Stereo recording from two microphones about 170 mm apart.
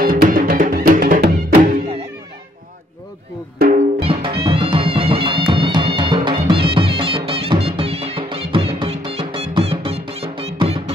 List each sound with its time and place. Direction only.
0.0 s music: 55° right (ahead or behind)
3.5 s drum: 60° right (ahead or behind)
4.0 s music: 30° right (ahead or behind)